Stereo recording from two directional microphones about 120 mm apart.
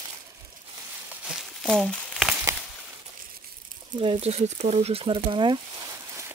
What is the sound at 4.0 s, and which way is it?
Speech, 55° right (ahead or behind).